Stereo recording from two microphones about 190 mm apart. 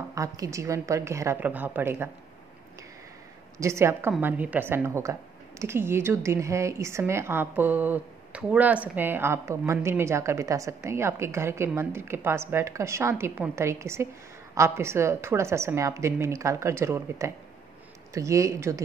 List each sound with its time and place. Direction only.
0.1 s a woman's voice: 15° right (ahead or behind)
3.5 s a woman's voice: 15° right (ahead or behind)